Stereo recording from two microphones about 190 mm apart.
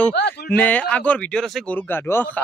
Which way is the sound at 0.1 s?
60° left (ahead or behind).